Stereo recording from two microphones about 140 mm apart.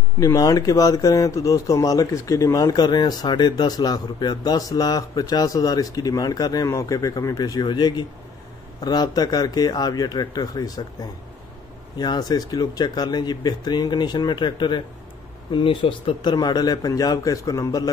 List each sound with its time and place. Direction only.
0.2 s speech: 25° left (ahead or behind)